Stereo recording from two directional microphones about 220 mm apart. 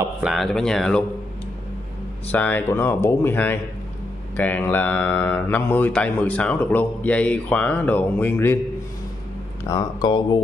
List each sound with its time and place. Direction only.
0.0 s speech: centre (ahead or behind)
2.3 s speech: 5° left (ahead or behind)
9.7 s speech: 15° left (ahead or behind)